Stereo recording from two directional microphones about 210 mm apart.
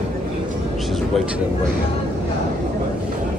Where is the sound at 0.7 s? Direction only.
Centre (ahead or behind).